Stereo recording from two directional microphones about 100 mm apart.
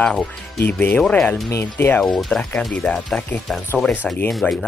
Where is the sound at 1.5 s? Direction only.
25° left (ahead or behind).